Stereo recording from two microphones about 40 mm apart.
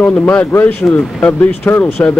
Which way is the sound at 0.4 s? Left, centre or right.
Left.